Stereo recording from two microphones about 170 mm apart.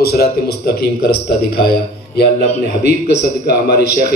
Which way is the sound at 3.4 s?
70° left (ahead or behind).